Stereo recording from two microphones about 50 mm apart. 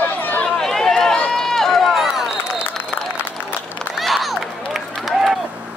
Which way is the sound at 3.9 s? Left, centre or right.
Centre.